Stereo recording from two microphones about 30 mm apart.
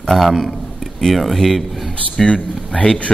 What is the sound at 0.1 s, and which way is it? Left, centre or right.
Speech, centre.